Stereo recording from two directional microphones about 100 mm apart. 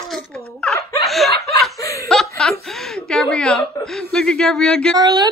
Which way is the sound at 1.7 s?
35° left (ahead or behind).